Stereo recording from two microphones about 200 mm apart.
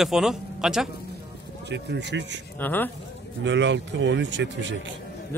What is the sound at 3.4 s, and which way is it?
A man's voice, 65° right (ahead or behind).